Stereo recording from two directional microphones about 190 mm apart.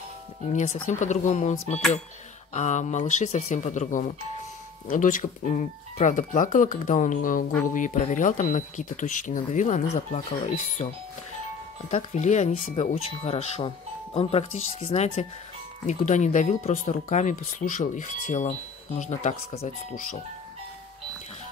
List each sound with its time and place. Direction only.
0.5 s speech: 40° left (ahead or behind)
11.9 s speech: 35° left (ahead or behind)
14.8 s speech: 30° left (ahead or behind)